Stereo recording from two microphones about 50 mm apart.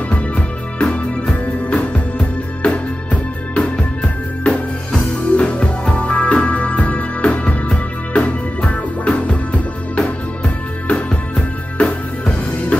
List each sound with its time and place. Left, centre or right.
1.4 s music: left